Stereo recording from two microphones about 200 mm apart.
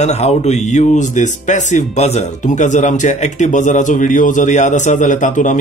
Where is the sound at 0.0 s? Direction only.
35° left (ahead or behind).